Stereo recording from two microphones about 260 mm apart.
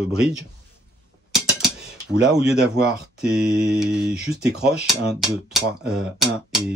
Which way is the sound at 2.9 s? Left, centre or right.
Centre.